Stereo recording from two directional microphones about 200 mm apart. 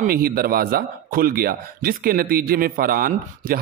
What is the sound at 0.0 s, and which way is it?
A man's voice, 50° right (ahead or behind).